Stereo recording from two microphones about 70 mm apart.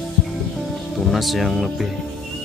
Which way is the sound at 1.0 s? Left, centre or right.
Centre.